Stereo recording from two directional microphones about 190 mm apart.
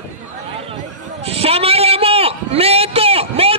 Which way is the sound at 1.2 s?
30° right (ahead or behind).